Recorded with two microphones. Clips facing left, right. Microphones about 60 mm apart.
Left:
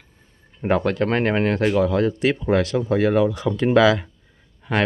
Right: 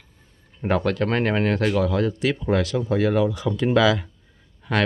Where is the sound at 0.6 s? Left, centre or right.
Left.